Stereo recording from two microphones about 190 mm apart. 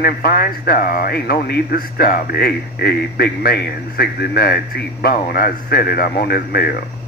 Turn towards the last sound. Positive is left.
turn(degrees=55)  # may be behind; listen again after turning